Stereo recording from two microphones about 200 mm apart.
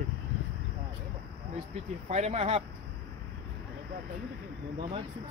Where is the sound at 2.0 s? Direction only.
35° right (ahead or behind).